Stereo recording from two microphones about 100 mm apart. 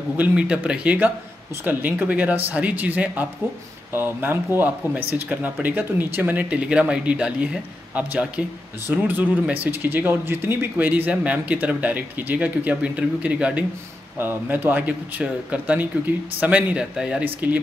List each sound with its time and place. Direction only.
0.2 s speech: 10° right (ahead or behind)